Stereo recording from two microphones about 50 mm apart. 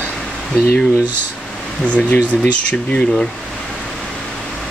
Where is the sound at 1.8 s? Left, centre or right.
Left.